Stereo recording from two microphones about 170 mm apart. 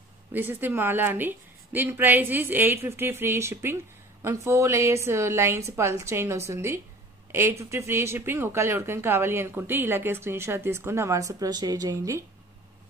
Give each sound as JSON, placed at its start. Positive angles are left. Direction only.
{"t": 0.3, "sound": "speech", "side_deg": -10}